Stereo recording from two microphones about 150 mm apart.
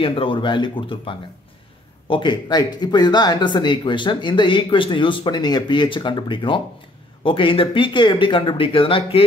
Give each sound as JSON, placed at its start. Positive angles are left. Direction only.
{"t": 0.0, "sound": "speech", "side_deg": 35}